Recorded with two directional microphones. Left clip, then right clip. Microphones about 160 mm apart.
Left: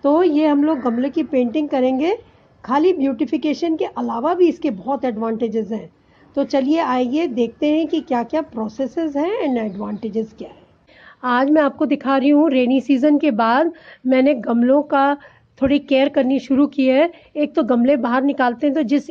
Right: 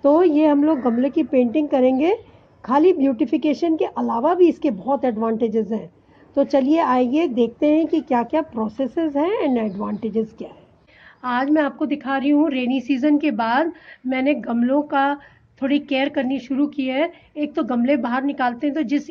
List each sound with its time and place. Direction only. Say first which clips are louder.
0.0 s a woman's voice: even; centre (ahead or behind)
11.1 s a woman's voice: left 4 dB; 50° left (ahead or behind); by 12.3 s 65° left (ahead or behind)
12.4 s a woman's voice: left 5 dB; 45° left (ahead or behind)
14.0 s a woman's voice: left 5 dB; 55° left (ahead or behind)